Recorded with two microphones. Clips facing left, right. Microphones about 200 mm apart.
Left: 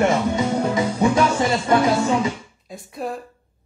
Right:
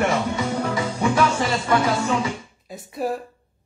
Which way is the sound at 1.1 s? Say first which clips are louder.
Left 2 dB; 20° left (ahead or behind).